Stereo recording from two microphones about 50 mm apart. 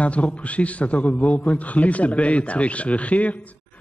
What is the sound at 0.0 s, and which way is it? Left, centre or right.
A man's voice, left.